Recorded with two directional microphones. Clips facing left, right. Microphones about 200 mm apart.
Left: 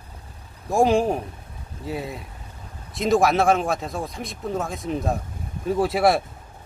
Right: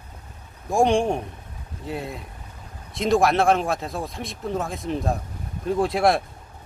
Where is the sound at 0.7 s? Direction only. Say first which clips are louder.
Left 1 dB; centre (ahead or behind).